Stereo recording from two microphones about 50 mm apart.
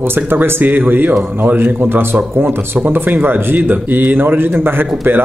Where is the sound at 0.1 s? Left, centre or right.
Right.